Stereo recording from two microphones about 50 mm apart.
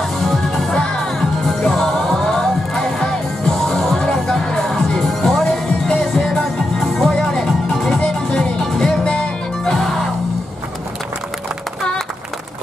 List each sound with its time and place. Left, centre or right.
0.0 s music: centre
0.7 s music: centre